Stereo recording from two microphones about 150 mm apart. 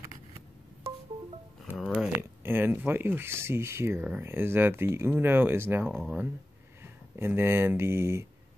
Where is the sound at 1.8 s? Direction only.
5° right (ahead or behind).